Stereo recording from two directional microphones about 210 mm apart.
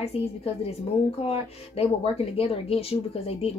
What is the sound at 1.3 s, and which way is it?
Speech, 30° left (ahead or behind).